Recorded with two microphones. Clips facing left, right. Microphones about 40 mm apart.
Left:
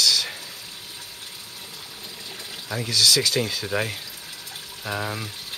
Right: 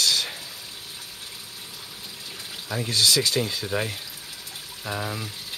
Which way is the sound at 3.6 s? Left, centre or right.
Centre.